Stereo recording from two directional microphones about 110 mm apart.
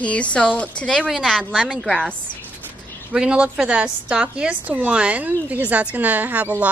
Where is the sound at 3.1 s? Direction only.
10° right (ahead or behind).